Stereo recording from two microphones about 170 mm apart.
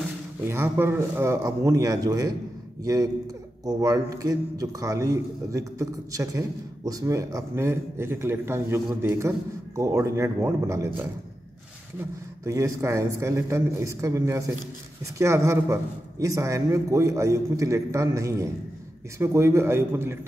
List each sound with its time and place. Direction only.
0.5 s a man's voice: 15° right (ahead or behind)